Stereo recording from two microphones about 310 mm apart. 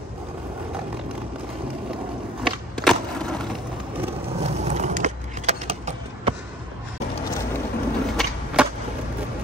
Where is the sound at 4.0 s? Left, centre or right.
Right.